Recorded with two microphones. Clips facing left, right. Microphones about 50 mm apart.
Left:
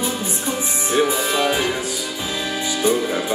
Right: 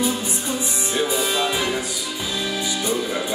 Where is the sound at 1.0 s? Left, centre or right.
Left.